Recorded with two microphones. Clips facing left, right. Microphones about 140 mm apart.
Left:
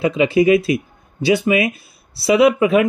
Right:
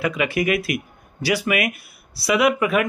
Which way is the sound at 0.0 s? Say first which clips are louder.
Left 7 dB; 25° left (ahead or behind).